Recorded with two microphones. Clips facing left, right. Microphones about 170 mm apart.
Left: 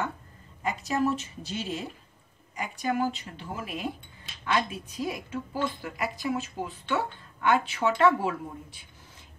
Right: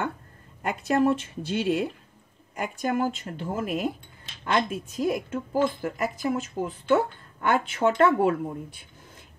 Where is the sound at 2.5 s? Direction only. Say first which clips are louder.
Right 2 dB; 50° right (ahead or behind).